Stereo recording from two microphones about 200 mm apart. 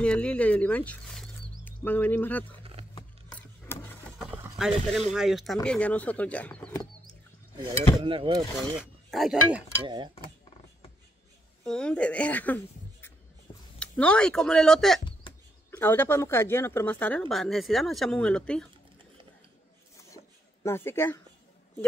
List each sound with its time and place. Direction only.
0.0 s speech: 5° left (ahead or behind)
3.3 s a sound: 10° left (ahead or behind)
4.2 s speech: 5° right (ahead or behind)
8.0 s speech: 25° right (ahead or behind)
8.5 s speech: centre (ahead or behind)
9.8 s speech: 20° right (ahead or behind)
11.6 s speech: 5° left (ahead or behind)
13.7 s speech: 5° left (ahead or behind)
20.6 s speech: 10° left (ahead or behind)